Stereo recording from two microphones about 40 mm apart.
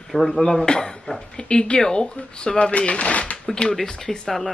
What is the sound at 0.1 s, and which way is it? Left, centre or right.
Speech, centre.